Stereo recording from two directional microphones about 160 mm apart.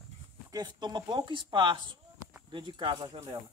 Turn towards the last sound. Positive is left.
turn(degrees=-25)  # may be behind; listen again after turning